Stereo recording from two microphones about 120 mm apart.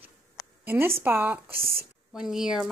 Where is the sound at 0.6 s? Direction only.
15° right (ahead or behind).